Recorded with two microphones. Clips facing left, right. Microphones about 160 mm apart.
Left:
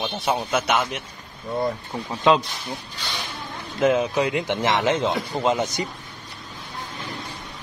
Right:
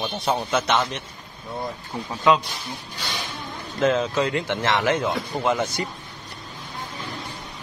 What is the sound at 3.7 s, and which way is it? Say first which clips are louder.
Speech: left 1 dB; 15° left (ahead or behind).